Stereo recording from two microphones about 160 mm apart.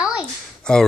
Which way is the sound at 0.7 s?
5° left (ahead or behind).